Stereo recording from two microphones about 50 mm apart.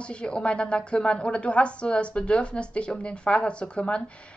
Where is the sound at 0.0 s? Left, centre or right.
Left.